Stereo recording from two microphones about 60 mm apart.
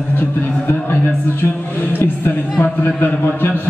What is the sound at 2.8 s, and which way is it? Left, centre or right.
Speech, left.